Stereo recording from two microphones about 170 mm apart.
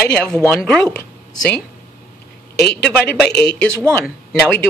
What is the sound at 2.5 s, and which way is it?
Speech, 70° left (ahead or behind).